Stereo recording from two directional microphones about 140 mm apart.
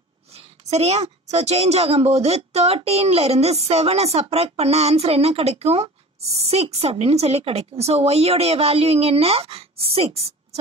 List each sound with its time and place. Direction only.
0.3 s a woman's voice: 50° right (ahead or behind)